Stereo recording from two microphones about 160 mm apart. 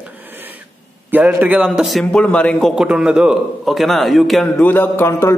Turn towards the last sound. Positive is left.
turn(degrees=15)  # may be behind; listen again after turning